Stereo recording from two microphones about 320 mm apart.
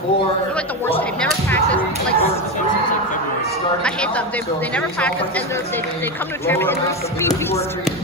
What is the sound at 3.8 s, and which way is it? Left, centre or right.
Speech, centre.